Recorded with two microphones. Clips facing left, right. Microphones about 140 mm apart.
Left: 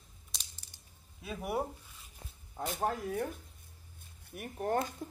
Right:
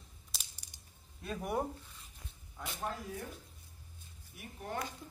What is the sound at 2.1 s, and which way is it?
Zipper, 40° left (ahead or behind).